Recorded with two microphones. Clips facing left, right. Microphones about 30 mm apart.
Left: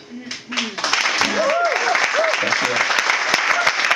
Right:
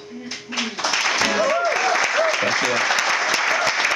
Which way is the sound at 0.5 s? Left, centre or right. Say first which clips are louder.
Left 2 dB; left.